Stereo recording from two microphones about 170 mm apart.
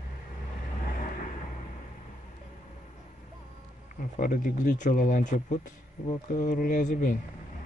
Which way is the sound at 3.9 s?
50° left (ahead or behind).